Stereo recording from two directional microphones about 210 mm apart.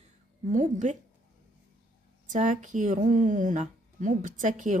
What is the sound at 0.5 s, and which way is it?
Speech, 35° right (ahead or behind).